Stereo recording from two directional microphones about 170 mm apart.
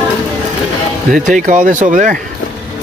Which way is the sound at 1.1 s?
50° right (ahead or behind).